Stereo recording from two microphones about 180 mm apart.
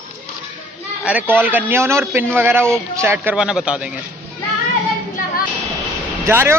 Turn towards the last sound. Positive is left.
turn(degrees=-15)  # may be behind; listen again after turning